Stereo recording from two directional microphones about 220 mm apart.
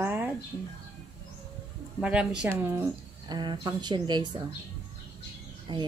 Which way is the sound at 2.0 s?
5° right (ahead or behind).